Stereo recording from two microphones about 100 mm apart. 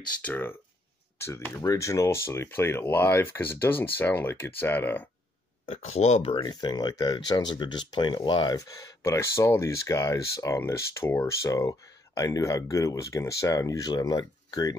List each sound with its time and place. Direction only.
0.2 s speech: 20° left (ahead or behind)
5.7 s speech: 90° left
6.3 s speech: 45° left (ahead or behind)
8.5 s speech: 35° left (ahead or behind)